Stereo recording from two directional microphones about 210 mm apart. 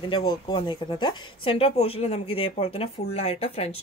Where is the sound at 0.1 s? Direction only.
25° left (ahead or behind).